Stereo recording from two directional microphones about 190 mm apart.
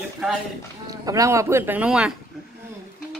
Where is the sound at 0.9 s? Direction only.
15° right (ahead or behind).